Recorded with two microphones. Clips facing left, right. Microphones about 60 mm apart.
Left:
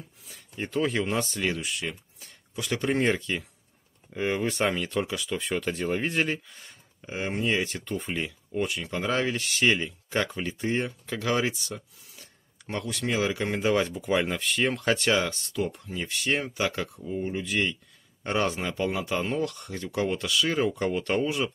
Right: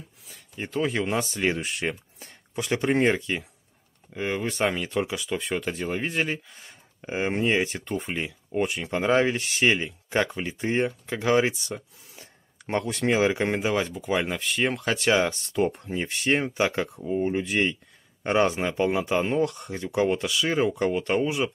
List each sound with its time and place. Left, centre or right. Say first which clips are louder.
0.3 s speech: even; centre
1.6 s speech: right 4 dB; right
2.6 s speech: right 3 dB; right
4.1 s speech: left 1 dB; centre
7.0 s speech: right 4 dB; right
7.9 s speech: right 1 dB; centre
8.5 s speech: right 5 dB; right
13.6 s speech: left 1 dB; centre
15.4 s speech: right 5 dB; right; by 21.5 s centre